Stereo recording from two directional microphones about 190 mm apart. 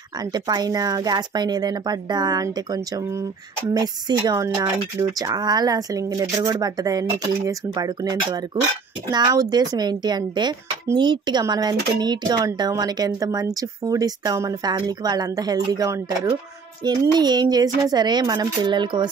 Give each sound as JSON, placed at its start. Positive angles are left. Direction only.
{"t": 0.1, "sound": "speech", "side_deg": -20}